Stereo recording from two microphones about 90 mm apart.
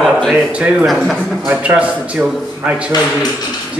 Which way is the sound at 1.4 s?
15° right (ahead or behind).